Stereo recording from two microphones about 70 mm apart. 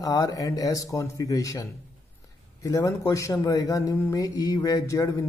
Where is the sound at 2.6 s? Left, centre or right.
Left.